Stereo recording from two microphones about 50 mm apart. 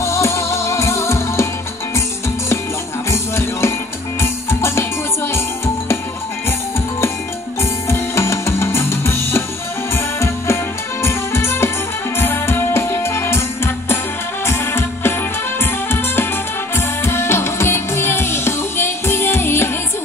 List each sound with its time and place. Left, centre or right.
0.0 s music: left
3.1 s music: left
7.9 s music: left
14.4 s music: left